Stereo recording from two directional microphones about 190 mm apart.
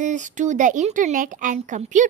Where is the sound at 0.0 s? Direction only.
40° right (ahead or behind).